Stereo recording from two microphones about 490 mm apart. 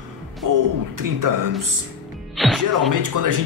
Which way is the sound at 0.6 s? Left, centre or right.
Right.